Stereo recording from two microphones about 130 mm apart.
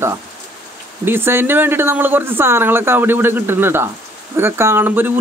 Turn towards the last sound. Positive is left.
turn(degrees=-15)  # may be behind; listen again after turning